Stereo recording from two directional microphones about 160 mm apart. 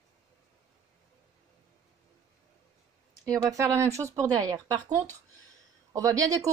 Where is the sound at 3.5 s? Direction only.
20° right (ahead or behind).